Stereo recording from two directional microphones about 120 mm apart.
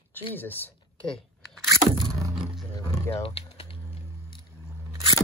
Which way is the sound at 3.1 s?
50° left (ahead or behind).